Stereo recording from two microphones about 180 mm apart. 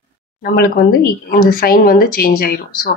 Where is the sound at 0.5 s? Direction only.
55° left (ahead or behind).